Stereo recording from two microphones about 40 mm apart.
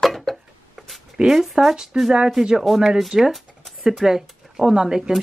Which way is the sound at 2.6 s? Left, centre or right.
Centre.